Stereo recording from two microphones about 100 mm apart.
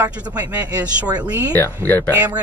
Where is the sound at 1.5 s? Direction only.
20° left (ahead or behind).